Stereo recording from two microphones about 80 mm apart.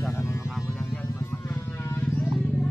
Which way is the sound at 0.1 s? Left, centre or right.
Left.